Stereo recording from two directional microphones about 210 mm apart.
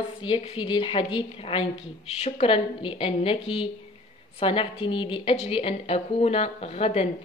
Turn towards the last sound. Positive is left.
turn(degrees=30)  # may be behind; listen again after turning